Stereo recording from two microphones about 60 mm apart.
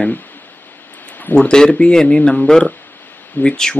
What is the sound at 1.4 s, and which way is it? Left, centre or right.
Speech, centre.